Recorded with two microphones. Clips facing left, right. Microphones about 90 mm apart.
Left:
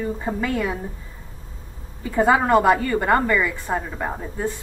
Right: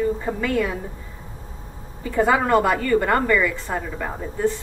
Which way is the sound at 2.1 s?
20° left (ahead or behind).